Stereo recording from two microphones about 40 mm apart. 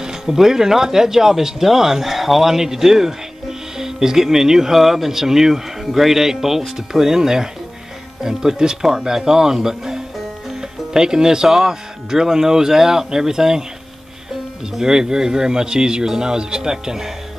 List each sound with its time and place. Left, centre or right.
0.0 s speech: centre
14.7 s speech: centre